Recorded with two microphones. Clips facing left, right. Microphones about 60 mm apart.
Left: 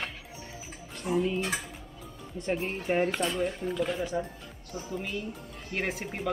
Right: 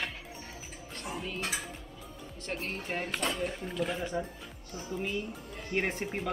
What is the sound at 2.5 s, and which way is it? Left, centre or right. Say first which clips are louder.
Speech: left 7 dB; centre.